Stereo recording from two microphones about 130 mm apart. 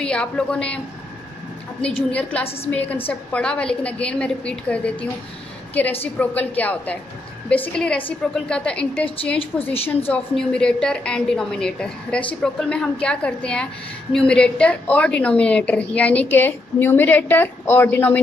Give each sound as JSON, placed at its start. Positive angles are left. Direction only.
{"t": 0.0, "sound": "a woman's voice", "side_deg": 5}
{"t": 2.0, "sound": "a woman's voice", "side_deg": 10}
{"t": 2.4, "sound": "a woman's voice", "side_deg": 50}
{"t": 2.7, "sound": "a woman's voice", "side_deg": 10}